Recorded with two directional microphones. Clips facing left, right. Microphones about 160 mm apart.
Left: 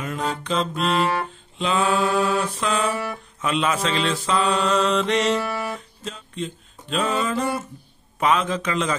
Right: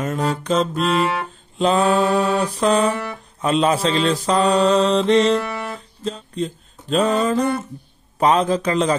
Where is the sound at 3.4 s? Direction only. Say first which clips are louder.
Right 5 dB; 35° right (ahead or behind).